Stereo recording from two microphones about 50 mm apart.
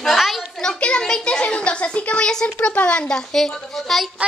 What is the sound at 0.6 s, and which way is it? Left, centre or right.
A child's voice, centre.